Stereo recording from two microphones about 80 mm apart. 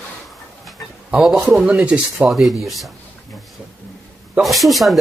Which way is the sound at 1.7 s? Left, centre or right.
Centre.